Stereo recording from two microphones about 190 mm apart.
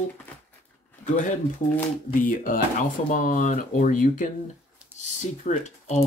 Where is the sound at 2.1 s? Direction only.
45° left (ahead or behind).